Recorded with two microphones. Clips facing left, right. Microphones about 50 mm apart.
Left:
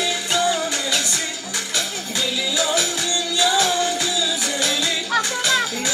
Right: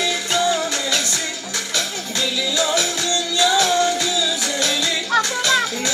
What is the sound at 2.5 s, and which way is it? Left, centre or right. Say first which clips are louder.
Music: right 1 dB; centre.